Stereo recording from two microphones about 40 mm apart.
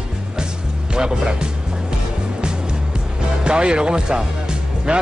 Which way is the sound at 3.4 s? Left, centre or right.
Right.